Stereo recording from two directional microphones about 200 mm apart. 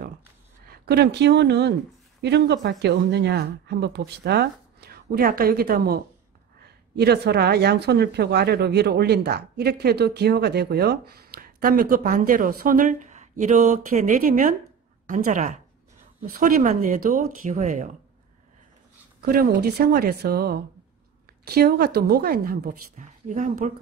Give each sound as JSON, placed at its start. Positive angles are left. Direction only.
{"t": 0.7, "sound": "a woman's voice", "side_deg": -55}
{"t": 19.2, "sound": "speech", "side_deg": -50}